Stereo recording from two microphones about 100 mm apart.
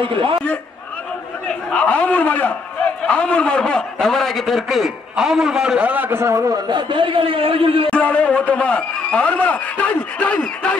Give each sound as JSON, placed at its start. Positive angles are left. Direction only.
{"t": 0.0, "sound": "speech", "side_deg": -60}
{"t": 1.7, "sound": "a man's voice", "side_deg": 15}
{"t": 6.7, "sound": "speech", "side_deg": -55}
{"t": 7.9, "sound": "a man's voice", "side_deg": 15}